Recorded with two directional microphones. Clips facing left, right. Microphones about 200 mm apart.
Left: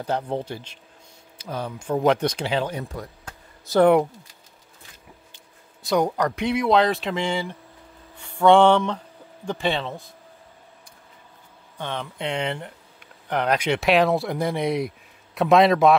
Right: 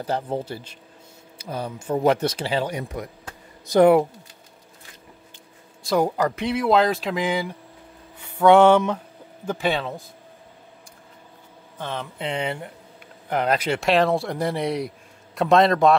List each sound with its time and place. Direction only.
0.0 s speech: 5° right (ahead or behind)
5.8 s speech: centre (ahead or behind)
11.8 s speech: 5° right (ahead or behind)